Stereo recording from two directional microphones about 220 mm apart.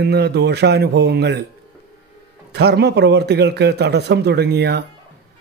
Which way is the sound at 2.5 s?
50° right (ahead or behind).